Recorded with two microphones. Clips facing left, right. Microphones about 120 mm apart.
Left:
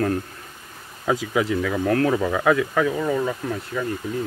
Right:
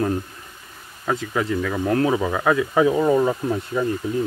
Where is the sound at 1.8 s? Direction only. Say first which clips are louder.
Right 1 dB; 15° right (ahead or behind).